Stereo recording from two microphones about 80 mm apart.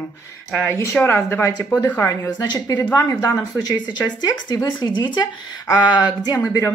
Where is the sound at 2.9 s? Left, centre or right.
Left.